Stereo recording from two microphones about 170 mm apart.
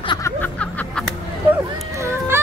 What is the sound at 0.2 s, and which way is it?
Music, 10° left (ahead or behind).